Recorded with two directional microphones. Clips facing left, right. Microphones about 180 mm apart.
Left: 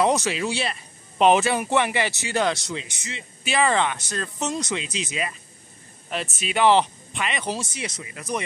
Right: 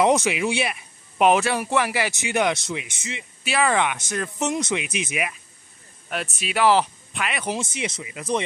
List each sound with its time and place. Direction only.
0.0 s speech: 20° right (ahead or behind)
2.2 s speech: 20° right (ahead or behind)
3.4 s speech: 5° right (ahead or behind)
6.0 s speech: centre (ahead or behind)
7.4 s speech: 20° right (ahead or behind)